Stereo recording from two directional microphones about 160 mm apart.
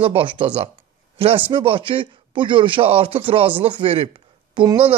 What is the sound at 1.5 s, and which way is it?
Speech, 30° right (ahead or behind).